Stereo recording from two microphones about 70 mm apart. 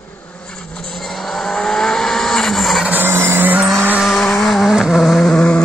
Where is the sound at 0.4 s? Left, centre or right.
Centre.